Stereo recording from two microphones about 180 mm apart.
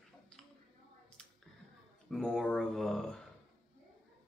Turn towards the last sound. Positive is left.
turn(degrees=0)  # may be behind; listen again after turning